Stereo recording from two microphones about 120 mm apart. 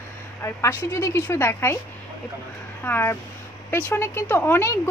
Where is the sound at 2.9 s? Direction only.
20° left (ahead or behind).